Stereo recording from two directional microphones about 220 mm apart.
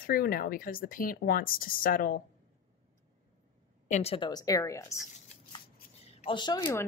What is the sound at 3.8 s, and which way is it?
A woman's voice, 30° left (ahead or behind).